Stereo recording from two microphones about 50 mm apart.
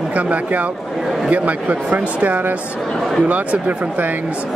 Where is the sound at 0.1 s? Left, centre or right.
Right.